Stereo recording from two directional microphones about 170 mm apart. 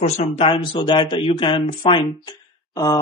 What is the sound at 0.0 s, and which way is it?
Speech, 35° left (ahead or behind).